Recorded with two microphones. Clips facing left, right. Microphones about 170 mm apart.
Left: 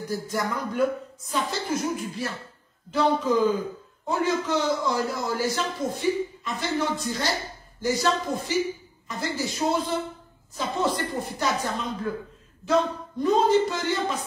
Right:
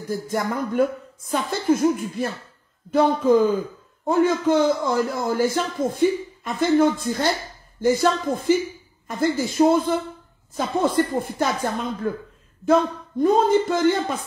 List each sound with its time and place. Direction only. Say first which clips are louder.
0.1 s a man's voice: right 4 dB; 55° right (ahead or behind)